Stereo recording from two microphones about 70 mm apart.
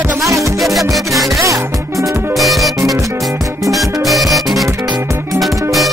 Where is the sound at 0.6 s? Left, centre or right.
Centre.